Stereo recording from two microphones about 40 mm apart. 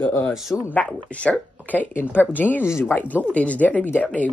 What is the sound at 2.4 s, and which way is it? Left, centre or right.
Speech, left.